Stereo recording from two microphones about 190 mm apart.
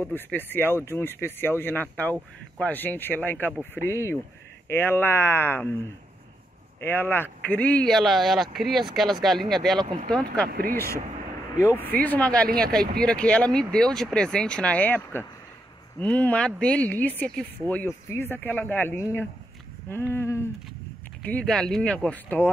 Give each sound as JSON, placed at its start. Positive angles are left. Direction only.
{"t": 0.0, "sound": "speech", "side_deg": 10}
{"t": 6.8, "sound": "speech", "side_deg": 10}
{"t": 9.8, "sound": "speech", "side_deg": -25}
{"t": 10.1, "sound": "speech", "side_deg": 5}
{"t": 10.5, "sound": "speech", "side_deg": -50}
{"t": 11.5, "sound": "speech", "side_deg": 15}